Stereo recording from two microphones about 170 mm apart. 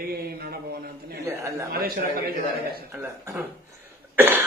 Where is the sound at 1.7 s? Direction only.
60° right (ahead or behind).